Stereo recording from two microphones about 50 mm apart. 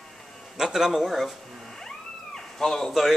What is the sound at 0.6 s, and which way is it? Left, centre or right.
Speech, centre.